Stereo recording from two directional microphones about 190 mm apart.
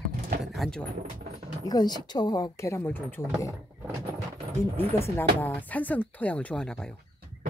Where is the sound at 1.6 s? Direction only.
20° left (ahead or behind).